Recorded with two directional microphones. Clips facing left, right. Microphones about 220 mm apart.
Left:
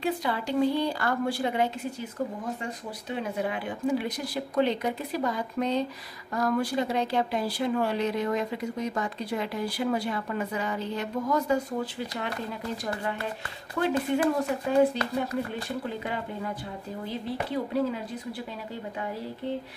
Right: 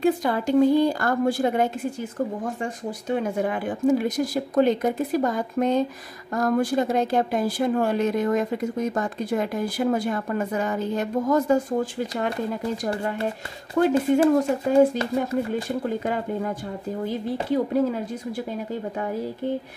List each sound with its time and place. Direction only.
0.0 s speech: 45° right (ahead or behind)
13.7 s speech: 45° right (ahead or behind)